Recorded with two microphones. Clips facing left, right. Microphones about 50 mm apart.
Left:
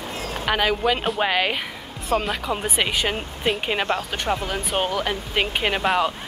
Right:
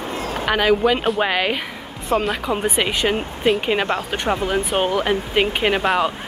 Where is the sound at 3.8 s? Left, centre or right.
Right.